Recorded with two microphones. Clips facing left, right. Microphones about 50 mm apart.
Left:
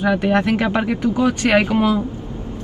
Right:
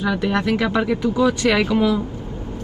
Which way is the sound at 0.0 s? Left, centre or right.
Left.